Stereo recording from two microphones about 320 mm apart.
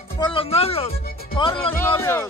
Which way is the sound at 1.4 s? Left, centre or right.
Centre.